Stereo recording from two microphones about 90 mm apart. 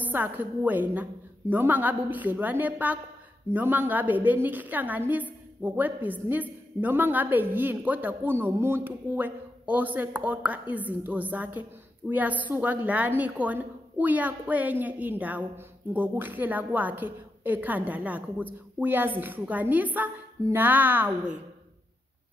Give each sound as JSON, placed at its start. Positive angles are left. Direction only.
{"t": 0.0, "sound": "a woman's voice", "side_deg": -20}